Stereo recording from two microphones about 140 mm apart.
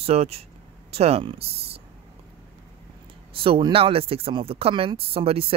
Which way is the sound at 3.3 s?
40° right (ahead or behind).